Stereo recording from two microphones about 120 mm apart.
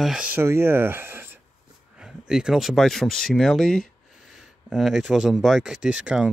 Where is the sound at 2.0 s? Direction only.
5° right (ahead or behind).